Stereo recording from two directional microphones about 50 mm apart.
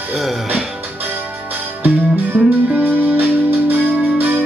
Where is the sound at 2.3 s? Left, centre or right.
Right.